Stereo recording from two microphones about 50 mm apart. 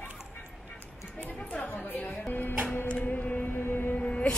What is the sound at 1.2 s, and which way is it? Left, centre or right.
Chatter, left.